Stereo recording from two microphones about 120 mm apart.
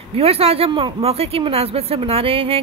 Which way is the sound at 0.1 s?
55° right (ahead or behind).